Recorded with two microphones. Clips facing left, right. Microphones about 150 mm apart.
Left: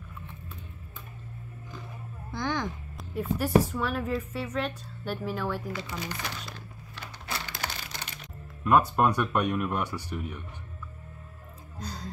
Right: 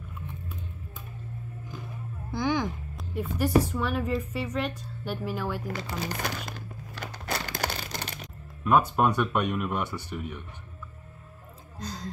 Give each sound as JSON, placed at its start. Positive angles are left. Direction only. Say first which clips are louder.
{"t": 2.3, "sound": "a woman's voice", "louder": "right 4 dB", "side_deg": -5}
{"t": 5.8, "sound": "speech", "louder": "right 3 dB", "side_deg": -40}
{"t": 7.0, "sound": "a sound", "louder": "right 4 dB", "side_deg": -40}
{"t": 8.6, "sound": "speech", "louder": "even", "side_deg": 0}
{"t": 11.8, "sound": "music", "louder": "right 2 dB", "side_deg": 10}